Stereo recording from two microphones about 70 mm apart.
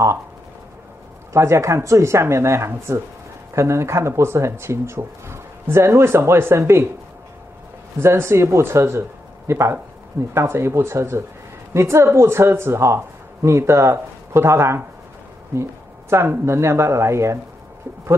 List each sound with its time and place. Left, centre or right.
1.3 s speech: right
8.0 s speech: right
16.1 s speech: right